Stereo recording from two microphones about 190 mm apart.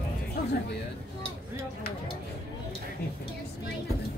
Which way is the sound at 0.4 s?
45° left (ahead or behind).